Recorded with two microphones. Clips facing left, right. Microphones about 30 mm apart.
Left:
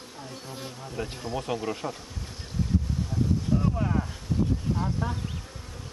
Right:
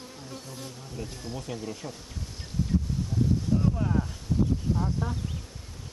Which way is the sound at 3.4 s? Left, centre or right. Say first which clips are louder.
Even; centre.